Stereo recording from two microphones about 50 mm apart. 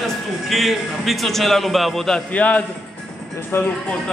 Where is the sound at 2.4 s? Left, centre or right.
Left.